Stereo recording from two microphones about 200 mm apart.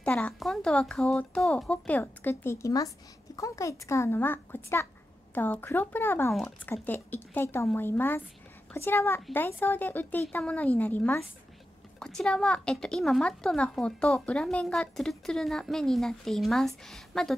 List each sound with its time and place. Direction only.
0.0 s a woman's voice: 5° left (ahead or behind)